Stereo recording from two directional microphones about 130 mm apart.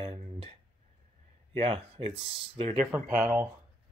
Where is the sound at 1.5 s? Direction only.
45° right (ahead or behind).